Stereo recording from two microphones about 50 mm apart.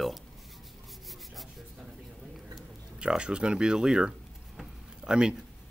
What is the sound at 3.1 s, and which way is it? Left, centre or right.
Speech, centre.